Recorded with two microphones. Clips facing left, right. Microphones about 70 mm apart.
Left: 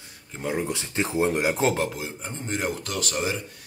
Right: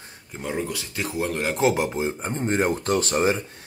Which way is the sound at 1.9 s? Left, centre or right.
Right.